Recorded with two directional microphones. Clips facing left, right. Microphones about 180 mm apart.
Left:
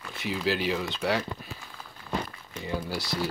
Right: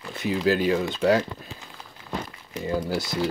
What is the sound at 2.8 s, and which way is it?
Speech, 50° right (ahead or behind).